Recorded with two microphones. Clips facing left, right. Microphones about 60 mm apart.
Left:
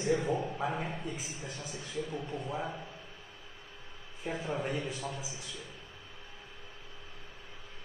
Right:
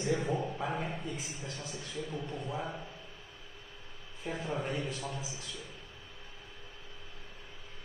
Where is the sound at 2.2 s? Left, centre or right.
Left.